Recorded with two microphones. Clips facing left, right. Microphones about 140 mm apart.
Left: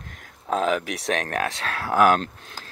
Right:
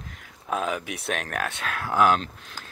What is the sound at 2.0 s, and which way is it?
Speech, 50° left (ahead or behind).